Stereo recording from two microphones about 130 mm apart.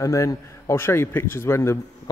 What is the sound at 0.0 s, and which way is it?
A man's voice, 25° left (ahead or behind).